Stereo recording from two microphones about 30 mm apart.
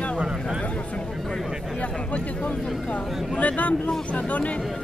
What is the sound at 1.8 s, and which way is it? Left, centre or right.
Speech, left.